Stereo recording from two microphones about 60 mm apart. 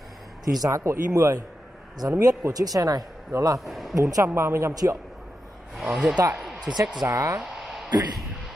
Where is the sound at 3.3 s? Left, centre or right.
Right.